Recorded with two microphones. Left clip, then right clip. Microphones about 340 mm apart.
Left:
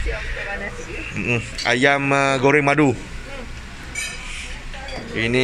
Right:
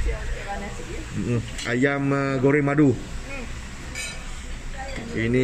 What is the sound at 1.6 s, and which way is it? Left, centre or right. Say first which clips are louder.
Speech: left 6 dB; centre.